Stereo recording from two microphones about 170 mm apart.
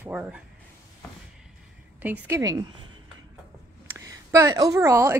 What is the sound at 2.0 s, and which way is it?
Speech, 15° right (ahead or behind).